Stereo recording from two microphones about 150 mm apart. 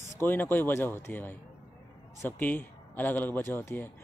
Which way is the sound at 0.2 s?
15° left (ahead or behind).